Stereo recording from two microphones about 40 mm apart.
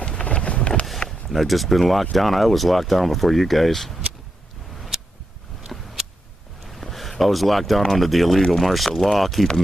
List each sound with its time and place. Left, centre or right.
0.2 s vehicle: left
1.3 s speech: centre
5.7 s a sound: centre
6.6 s speech: centre